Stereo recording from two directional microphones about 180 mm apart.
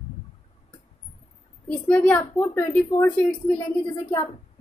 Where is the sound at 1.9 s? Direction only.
10° left (ahead or behind).